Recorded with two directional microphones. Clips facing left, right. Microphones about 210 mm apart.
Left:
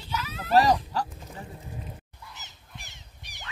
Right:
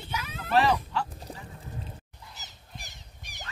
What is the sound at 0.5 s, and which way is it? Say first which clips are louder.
Speech: left 3 dB; 40° left (ahead or behind).